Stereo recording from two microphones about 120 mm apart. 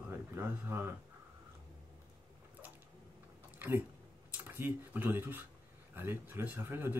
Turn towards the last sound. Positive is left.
turn(degrees=-20)  # may be behind; listen again after turning